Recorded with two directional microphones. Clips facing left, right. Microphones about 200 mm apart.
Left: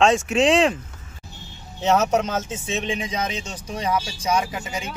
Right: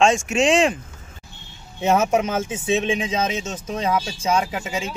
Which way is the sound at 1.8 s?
10° right (ahead or behind).